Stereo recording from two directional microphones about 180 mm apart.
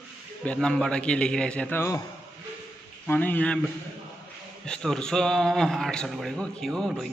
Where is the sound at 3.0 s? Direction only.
10° left (ahead or behind).